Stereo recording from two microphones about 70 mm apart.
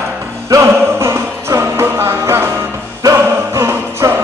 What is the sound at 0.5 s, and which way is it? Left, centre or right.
Music, right.